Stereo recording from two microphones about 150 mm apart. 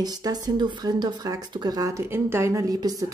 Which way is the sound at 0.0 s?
25° right (ahead or behind).